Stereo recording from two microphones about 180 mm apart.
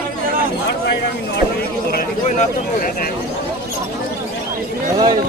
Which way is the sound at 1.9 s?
45° left (ahead or behind).